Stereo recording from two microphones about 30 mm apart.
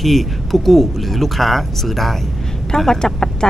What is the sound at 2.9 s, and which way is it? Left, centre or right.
Speech, left.